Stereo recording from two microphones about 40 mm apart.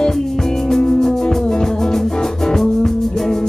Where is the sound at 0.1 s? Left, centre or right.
Centre.